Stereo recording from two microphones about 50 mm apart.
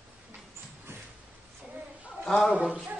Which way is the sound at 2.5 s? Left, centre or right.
Right.